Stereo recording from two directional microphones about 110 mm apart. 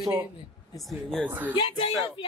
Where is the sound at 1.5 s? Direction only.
50° left (ahead or behind).